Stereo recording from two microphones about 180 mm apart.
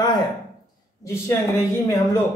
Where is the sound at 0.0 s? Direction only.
25° left (ahead or behind).